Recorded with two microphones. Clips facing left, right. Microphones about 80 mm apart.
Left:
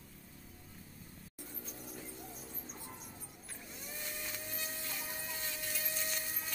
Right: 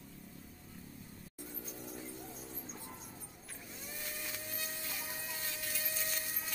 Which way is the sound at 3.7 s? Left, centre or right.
Centre.